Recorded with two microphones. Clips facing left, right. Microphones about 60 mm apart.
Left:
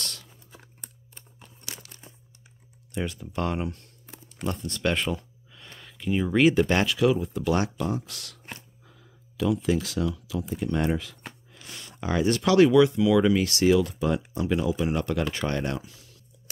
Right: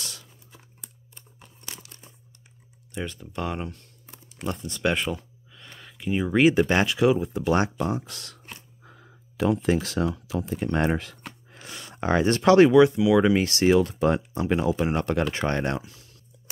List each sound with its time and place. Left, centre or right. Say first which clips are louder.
0.0 s a sound: left 2 dB; centre
1.9 s crumpling: left 1 dB; left
2.9 s speech: left 2 dB; centre; by 8.4 s right
8.8 s speech: right 4 dB; right